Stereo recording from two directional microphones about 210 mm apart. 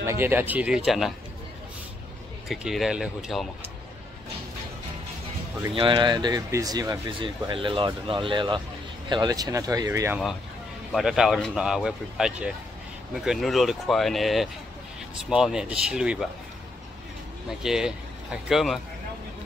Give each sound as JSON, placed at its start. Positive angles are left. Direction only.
{"t": 0.0, "sound": "speech", "side_deg": -10}
{"t": 2.4, "sound": "speech", "side_deg": 0}
{"t": 5.7, "sound": "speech", "side_deg": -25}
{"t": 17.6, "sound": "speech", "side_deg": -5}